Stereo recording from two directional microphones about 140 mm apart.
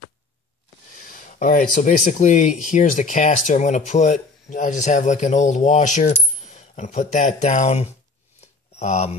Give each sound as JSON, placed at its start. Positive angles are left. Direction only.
{"t": 0.9, "sound": "speech", "side_deg": 75}